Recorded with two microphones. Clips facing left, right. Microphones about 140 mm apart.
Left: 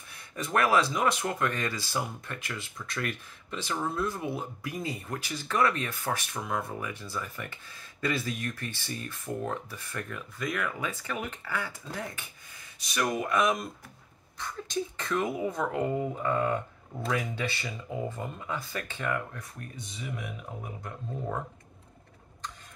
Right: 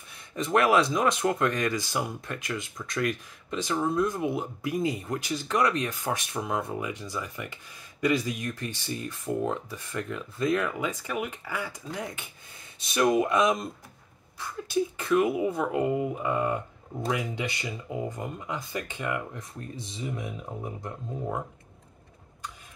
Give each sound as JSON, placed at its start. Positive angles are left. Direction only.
{"t": 0.3, "sound": "speech", "side_deg": -20}
{"t": 14.4, "sound": "speech", "side_deg": -10}
{"t": 19.7, "sound": "speech", "side_deg": -30}
{"t": 21.1, "sound": "speech", "side_deg": -15}